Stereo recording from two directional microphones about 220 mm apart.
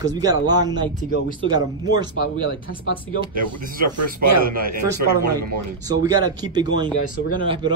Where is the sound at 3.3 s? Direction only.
40° right (ahead or behind).